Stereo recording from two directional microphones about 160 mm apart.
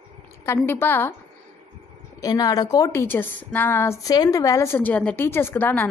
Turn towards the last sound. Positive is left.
turn(degrees=10)  # may be behind; listen again after turning